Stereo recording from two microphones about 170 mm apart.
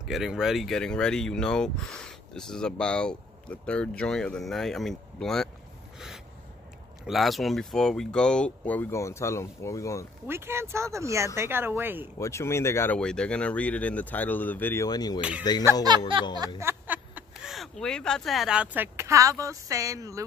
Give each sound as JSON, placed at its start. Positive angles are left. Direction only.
{"t": 0.0, "sound": "speech", "side_deg": -5}
{"t": 5.9, "sound": "a sound", "side_deg": -5}
{"t": 7.1, "sound": "speech", "side_deg": 0}
{"t": 10.2, "sound": "speech", "side_deg": -15}
{"t": 12.2, "sound": "speech", "side_deg": 15}
{"t": 14.9, "sound": "speech", "side_deg": 25}
{"t": 15.9, "sound": "a sound", "side_deg": -25}
{"t": 16.5, "sound": "speech", "side_deg": -10}